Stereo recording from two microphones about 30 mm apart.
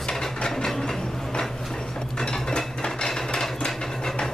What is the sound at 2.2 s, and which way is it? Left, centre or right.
Cutlery, left.